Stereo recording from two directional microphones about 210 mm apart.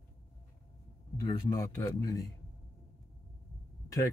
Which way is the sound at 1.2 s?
15° left (ahead or behind).